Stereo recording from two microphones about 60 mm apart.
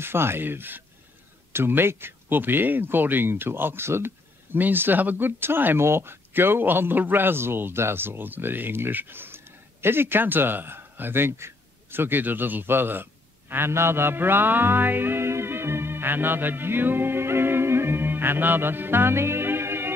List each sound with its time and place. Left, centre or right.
0.0 s speech: right